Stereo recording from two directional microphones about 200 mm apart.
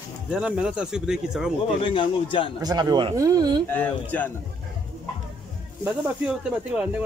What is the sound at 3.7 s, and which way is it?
Speech, 10° left (ahead or behind).